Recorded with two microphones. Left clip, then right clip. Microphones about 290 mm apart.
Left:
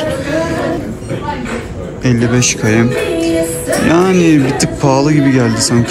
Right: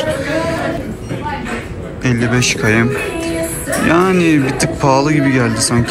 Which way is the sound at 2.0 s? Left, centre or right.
Centre.